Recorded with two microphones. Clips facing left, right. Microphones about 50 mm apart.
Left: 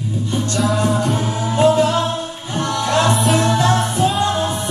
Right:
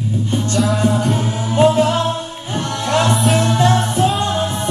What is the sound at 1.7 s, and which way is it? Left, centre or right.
Music, right.